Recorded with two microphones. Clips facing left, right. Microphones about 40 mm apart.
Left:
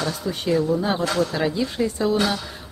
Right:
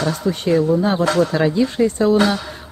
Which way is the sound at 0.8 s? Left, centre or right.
Centre.